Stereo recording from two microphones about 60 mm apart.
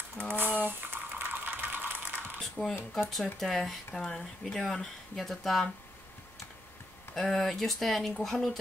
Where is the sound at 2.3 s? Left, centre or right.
Centre.